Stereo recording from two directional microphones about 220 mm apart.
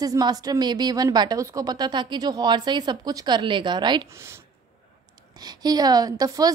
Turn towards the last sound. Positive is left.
turn(degrees=-15)  # may be behind; listen again after turning